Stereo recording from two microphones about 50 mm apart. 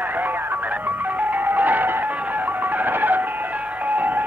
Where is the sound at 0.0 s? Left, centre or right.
Right.